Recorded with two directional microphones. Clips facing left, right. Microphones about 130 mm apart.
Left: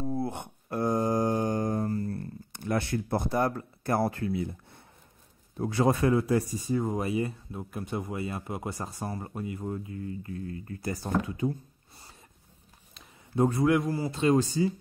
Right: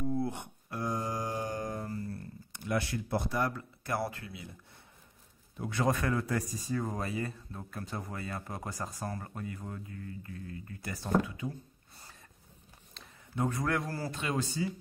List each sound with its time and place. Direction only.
0.3 s mantra: 50° left (ahead or behind)
5.6 s speech: 30° left (ahead or behind)
13.4 s speech: 30° left (ahead or behind)
13.7 s speech: 15° left (ahead or behind)
14.1 s speech: 35° left (ahead or behind)